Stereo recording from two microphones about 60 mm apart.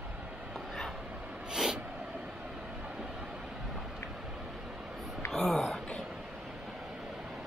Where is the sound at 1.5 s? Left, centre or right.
Centre.